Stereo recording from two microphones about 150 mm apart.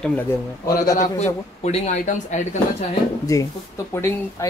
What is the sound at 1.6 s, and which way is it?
Speech, 45° left (ahead or behind).